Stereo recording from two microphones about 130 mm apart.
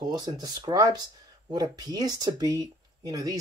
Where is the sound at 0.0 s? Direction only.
35° right (ahead or behind).